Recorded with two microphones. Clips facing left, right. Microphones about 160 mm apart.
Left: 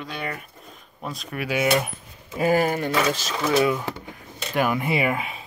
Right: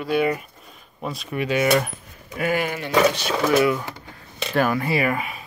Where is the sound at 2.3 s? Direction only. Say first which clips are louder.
Left 3 dB; 35° left (ahead or behind).